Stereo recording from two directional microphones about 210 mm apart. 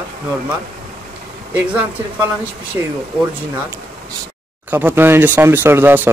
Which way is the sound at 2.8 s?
15° right (ahead or behind).